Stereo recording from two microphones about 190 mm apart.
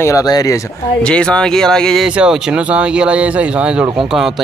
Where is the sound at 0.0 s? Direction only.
20° left (ahead or behind).